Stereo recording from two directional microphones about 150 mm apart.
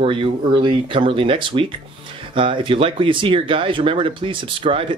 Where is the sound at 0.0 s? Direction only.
35° right (ahead or behind).